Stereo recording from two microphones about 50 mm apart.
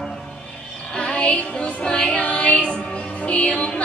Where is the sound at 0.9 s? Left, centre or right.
Left.